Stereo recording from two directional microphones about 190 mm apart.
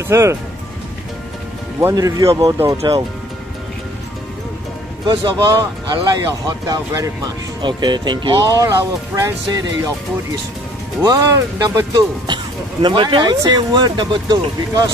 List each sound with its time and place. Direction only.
0.1 s speech: 15° right (ahead or behind)
1.8 s speech: 15° right (ahead or behind)
5.0 s speech: 25° right (ahead or behind)
11.0 s speech: 20° right (ahead or behind)